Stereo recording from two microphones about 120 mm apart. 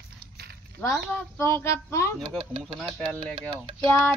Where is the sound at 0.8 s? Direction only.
15° left (ahead or behind).